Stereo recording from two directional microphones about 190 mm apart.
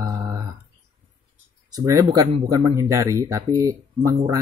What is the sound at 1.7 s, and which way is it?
Speech, 20° right (ahead or behind).